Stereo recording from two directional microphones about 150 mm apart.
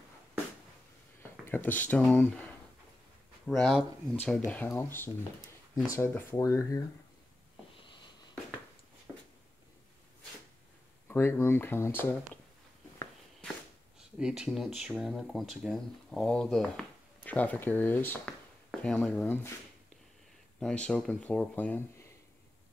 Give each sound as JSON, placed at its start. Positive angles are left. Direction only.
{"t": 1.4, "sound": "speech", "side_deg": 10}
{"t": 11.1, "sound": "speech", "side_deg": 15}
{"t": 14.1, "sound": "speech", "side_deg": -5}
{"t": 20.5, "sound": "speech", "side_deg": 5}